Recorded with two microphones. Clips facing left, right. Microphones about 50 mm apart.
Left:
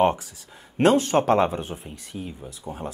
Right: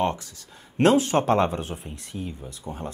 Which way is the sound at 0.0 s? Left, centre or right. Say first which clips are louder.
Left 5 dB; centre.